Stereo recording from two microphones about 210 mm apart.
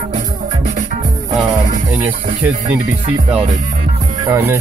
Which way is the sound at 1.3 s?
15° right (ahead or behind).